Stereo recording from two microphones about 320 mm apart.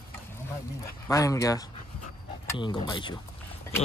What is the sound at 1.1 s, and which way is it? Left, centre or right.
Speech, centre.